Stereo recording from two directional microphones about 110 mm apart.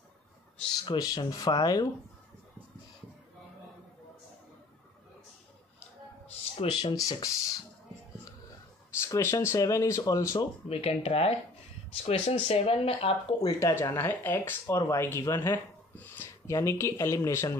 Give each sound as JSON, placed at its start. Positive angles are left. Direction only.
{"t": 0.9, "sound": "speech", "side_deg": 35}
{"t": 6.5, "sound": "speech", "side_deg": 50}
{"t": 9.0, "sound": "speech", "side_deg": 25}
{"t": 10.7, "sound": "speech", "side_deg": 65}
{"t": 13.6, "sound": "speech", "side_deg": 30}
{"t": 13.9, "sound": "speech", "side_deg": 20}